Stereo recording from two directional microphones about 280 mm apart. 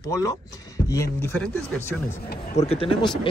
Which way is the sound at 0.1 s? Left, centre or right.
Centre.